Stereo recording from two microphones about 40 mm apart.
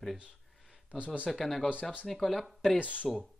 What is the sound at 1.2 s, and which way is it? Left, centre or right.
Speech, centre.